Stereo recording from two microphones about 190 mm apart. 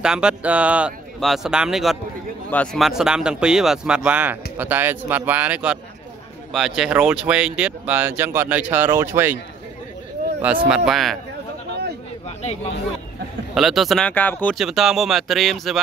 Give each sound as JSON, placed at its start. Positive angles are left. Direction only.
{"t": 0.0, "sound": "speech", "side_deg": -5}
{"t": 10.4, "sound": "speech", "side_deg": -10}
{"t": 12.3, "sound": "a sound", "side_deg": 35}
{"t": 13.6, "sound": "speech", "side_deg": 0}